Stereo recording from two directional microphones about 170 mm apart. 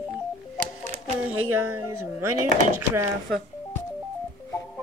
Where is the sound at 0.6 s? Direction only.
45° right (ahead or behind).